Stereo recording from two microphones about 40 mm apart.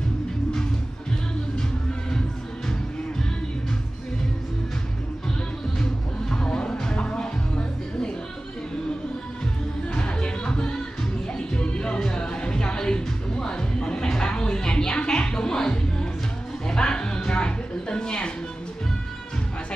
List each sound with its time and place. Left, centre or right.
6.3 s music: left
9.9 s music: left